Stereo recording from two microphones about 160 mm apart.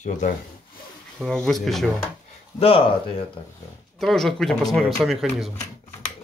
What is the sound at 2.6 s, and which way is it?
Speech, 35° left (ahead or behind).